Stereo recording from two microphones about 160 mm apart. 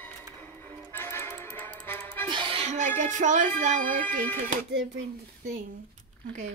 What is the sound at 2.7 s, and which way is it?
A woman's voice, 50° right (ahead or behind).